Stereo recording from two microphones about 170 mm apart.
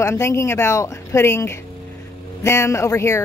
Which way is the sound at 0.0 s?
15° left (ahead or behind).